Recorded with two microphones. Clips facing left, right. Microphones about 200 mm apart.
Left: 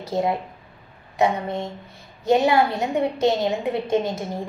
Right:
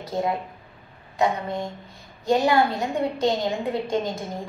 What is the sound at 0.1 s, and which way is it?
A woman's voice, 25° left (ahead or behind).